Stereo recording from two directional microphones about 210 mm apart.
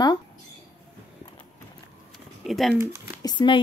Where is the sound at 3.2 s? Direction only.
20° left (ahead or behind).